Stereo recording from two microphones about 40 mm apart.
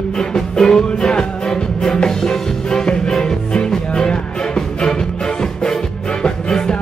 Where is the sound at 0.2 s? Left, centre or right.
Centre.